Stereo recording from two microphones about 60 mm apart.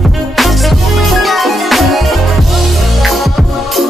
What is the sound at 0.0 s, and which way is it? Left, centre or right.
Music, centre.